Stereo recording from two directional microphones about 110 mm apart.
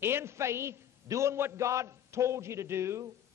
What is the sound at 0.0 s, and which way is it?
A man's voice, 25° right (ahead or behind).